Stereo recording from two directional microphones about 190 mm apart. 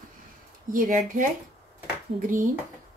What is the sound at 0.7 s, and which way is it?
Speech, 45° right (ahead or behind).